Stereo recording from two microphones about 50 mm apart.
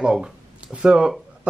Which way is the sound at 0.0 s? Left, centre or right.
Centre.